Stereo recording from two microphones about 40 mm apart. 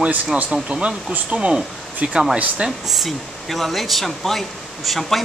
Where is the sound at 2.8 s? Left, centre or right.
Centre.